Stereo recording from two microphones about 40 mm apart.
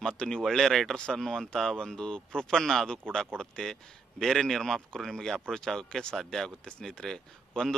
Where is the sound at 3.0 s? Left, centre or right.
Left.